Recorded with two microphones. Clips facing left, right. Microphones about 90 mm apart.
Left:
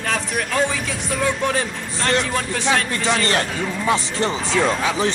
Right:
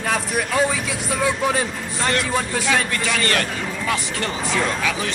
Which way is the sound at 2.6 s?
30° left (ahead or behind).